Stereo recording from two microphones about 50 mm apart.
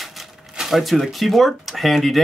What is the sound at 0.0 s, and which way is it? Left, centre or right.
Speech, centre.